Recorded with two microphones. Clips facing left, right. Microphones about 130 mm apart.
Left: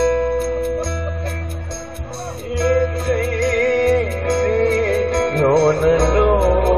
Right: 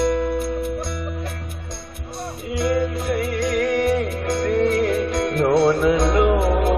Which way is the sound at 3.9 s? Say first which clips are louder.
Left 4 dB; 50° left (ahead or behind).